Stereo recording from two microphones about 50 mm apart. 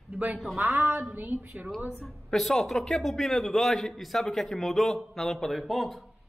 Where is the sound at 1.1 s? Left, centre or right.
Right.